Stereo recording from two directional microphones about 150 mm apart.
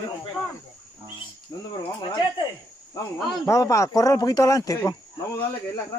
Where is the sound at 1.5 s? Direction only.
25° left (ahead or behind).